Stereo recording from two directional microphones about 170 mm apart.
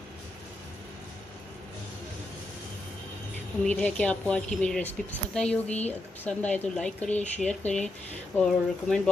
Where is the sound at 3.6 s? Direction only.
5° left (ahead or behind).